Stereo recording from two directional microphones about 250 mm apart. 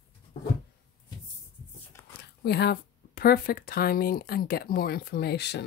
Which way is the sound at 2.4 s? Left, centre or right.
Left.